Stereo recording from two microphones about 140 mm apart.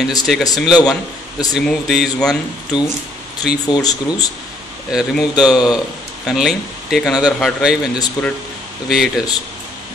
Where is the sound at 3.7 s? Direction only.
30° left (ahead or behind).